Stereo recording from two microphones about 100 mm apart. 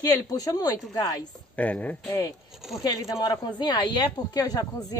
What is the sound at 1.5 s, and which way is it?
Speech, 15° left (ahead or behind).